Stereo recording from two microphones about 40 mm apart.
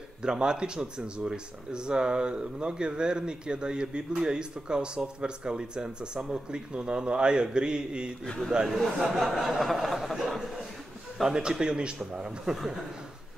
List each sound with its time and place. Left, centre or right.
0.2 s speech: centre
8.6 s a man's voice: centre